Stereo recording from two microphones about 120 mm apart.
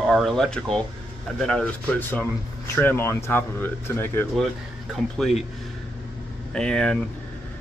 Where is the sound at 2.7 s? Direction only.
20° left (ahead or behind).